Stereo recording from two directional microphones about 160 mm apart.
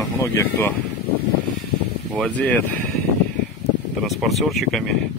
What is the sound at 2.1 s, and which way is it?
Speech, 5° left (ahead or behind).